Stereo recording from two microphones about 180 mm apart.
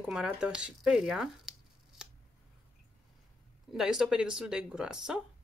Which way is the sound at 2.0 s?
5° right (ahead or behind).